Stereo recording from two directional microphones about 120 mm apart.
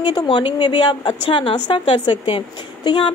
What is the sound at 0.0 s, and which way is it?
A woman's voice, 35° left (ahead or behind).